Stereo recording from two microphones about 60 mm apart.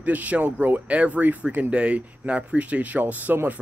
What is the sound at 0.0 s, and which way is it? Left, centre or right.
Speech, right.